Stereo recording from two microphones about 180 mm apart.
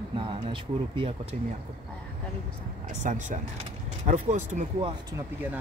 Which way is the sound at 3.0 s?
45° right (ahead or behind).